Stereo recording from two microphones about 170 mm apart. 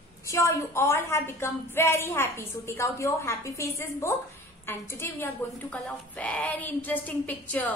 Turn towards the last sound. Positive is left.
turn(degrees=10)  # may be behind; listen again after turning